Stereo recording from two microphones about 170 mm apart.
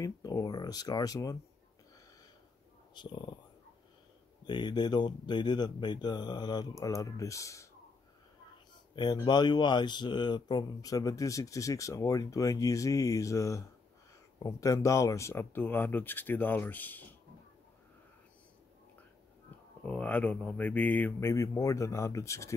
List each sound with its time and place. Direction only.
0.0 s speech: 20° left (ahead or behind)
2.9 s speech: 25° left (ahead or behind)
4.5 s speech: 25° left (ahead or behind)
8.9 s speech: 25° left (ahead or behind); by 17.0 s 10° left (ahead or behind)
19.8 s speech: 10° left (ahead or behind)